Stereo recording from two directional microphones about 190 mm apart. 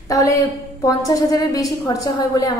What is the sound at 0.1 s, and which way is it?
A woman's voice, 15° left (ahead or behind).